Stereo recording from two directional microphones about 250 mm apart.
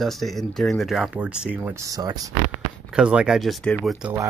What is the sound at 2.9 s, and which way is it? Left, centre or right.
Speech, centre.